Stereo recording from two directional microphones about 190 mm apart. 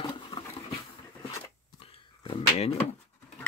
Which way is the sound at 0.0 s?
25° left (ahead or behind).